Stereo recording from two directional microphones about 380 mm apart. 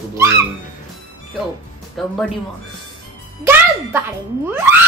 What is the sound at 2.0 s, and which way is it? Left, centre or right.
Speech, centre.